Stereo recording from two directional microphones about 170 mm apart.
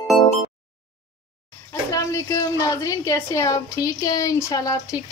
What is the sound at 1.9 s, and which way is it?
A woman's voice, 20° left (ahead or behind).